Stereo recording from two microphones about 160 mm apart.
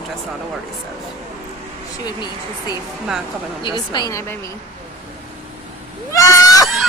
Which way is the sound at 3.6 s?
30° left (ahead or behind).